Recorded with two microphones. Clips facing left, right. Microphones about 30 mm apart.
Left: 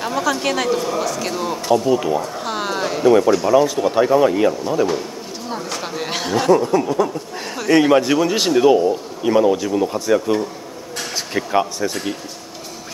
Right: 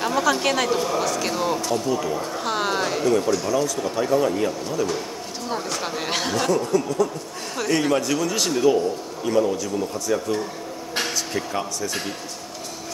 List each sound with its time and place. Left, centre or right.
0.0 s speech: centre
1.6 s speech: left
2.2 s a sound: centre
3.1 s speech: left
5.5 s speech: centre
6.5 s speech: left